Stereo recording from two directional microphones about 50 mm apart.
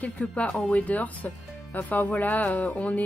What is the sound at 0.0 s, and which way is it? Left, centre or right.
Speech, left.